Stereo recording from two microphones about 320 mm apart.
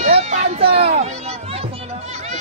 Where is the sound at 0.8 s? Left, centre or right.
Right.